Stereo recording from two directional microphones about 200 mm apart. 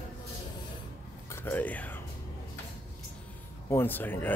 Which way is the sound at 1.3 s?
10° left (ahead or behind).